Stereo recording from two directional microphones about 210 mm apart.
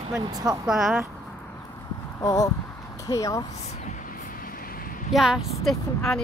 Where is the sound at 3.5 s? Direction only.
35° left (ahead or behind).